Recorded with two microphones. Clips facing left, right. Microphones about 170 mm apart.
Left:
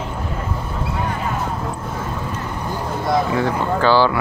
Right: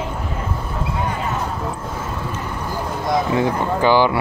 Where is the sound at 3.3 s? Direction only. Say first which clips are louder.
Right 1 dB; 15° right (ahead or behind).